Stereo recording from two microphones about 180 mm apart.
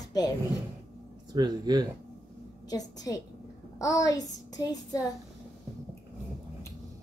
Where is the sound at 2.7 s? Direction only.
20° left (ahead or behind).